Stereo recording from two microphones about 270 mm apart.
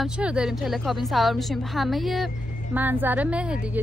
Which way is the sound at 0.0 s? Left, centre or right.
Centre.